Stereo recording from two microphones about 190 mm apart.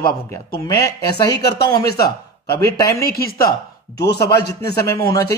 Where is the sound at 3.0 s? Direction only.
55° left (ahead or behind).